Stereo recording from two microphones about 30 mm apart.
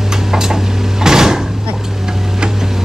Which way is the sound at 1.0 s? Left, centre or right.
Centre.